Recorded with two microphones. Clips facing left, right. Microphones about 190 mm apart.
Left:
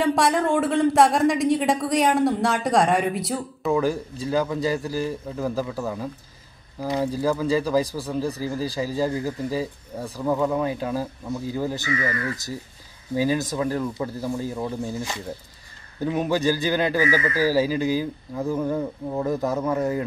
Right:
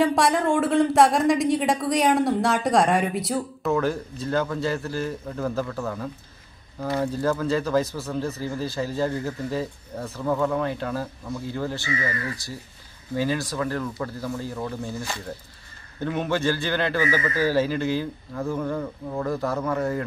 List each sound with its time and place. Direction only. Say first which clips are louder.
0.0 s speech: even; centre (ahead or behind)
13.1 s speech: left 3 dB; 15° left (ahead or behind)